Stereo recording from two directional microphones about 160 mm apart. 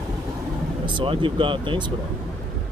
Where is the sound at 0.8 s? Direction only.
30° right (ahead or behind).